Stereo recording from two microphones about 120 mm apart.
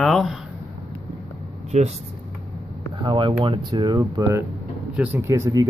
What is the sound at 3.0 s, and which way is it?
Speech, 45° right (ahead or behind).